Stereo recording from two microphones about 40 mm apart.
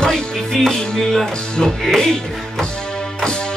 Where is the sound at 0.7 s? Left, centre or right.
Centre.